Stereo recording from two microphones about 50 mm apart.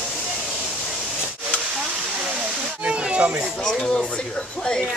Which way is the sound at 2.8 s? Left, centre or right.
Right.